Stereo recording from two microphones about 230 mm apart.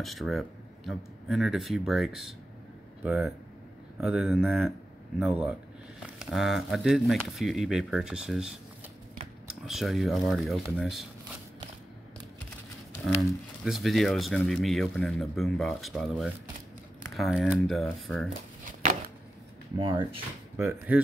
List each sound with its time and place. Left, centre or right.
0.0 s speech: centre
13.7 s speech: centre
18.7 s a sound: right
19.8 s speech: centre
20.5 s speech: centre